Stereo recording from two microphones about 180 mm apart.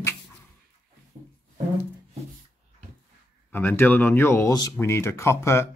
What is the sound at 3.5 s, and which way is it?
Speech, 10° left (ahead or behind).